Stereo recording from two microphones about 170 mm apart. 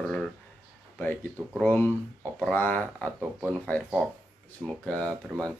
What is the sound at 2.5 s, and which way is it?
Speech, 10° left (ahead or behind).